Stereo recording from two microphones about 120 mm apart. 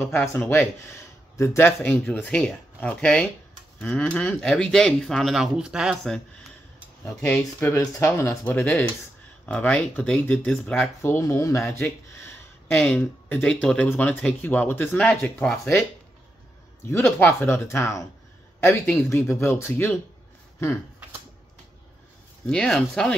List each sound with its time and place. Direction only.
0.1 s speech: 20° left (ahead or behind); by 6.5 s 5° left (ahead or behind)
7.2 s speech: 15° left (ahead or behind)
12.7 s speech: 10° left (ahead or behind)
16.8 s speech: 20° left (ahead or behind)
19.0 s speech: 20° left (ahead or behind)
22.5 s speech: 5° left (ahead or behind)